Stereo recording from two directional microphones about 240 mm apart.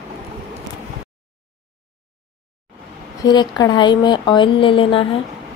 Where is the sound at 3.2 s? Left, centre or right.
Centre.